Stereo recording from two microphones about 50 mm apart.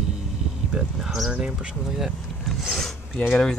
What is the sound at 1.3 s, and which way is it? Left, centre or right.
Speech, centre.